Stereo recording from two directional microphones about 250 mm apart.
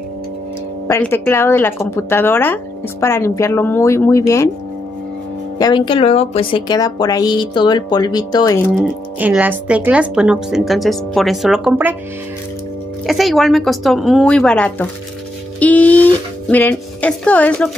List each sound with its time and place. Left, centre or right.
0.8 s speech: centre
5.6 s a woman's voice: centre
8.7 s speech: centre
13.0 s speech: centre